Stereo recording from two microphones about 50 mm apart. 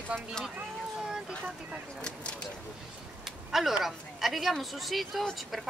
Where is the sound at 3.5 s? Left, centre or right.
Centre.